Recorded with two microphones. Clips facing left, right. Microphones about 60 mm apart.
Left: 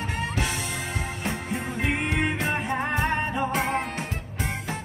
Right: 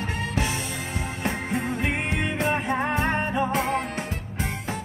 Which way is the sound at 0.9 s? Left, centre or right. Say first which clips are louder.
Right 2 dB; right.